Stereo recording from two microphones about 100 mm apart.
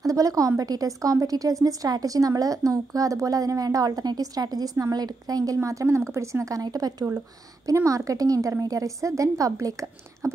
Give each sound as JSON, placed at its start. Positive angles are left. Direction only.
{"t": 0.0, "sound": "a woman's voice", "side_deg": -35}